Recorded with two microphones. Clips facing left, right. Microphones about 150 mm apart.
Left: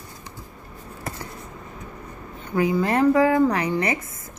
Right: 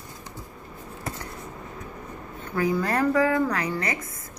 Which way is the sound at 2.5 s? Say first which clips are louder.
Left 3 dB; 20° left (ahead or behind).